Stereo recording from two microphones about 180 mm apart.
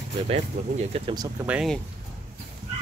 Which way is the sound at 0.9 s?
30° right (ahead or behind).